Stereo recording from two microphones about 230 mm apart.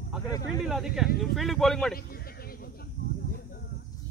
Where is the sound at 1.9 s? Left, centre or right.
Left.